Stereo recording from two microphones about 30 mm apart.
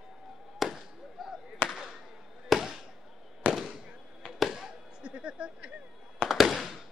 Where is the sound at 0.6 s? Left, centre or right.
Centre.